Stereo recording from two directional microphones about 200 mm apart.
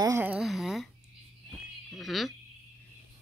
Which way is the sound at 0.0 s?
10° right (ahead or behind).